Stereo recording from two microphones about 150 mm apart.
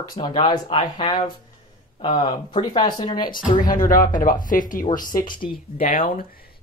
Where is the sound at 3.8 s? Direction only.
65° left (ahead or behind).